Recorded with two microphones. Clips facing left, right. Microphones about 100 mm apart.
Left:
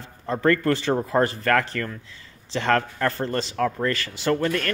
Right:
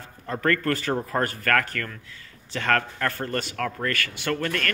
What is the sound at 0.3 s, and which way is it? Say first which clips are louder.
A man's voice: left 4 dB; 20° left (ahead or behind).